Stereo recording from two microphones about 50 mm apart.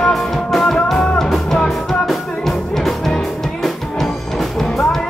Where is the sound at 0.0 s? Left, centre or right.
Centre.